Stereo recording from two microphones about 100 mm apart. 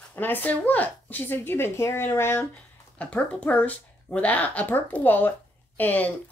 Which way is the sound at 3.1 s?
10° left (ahead or behind).